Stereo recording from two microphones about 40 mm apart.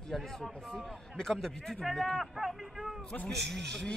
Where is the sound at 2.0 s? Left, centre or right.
Centre.